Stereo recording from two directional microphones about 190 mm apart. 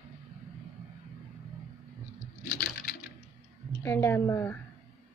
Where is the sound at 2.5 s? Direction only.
60° left (ahead or behind).